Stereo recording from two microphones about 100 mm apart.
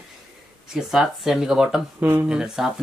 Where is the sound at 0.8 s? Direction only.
5° right (ahead or behind).